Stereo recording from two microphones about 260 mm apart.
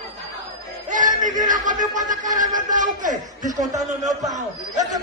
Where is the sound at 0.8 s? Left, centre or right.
Right.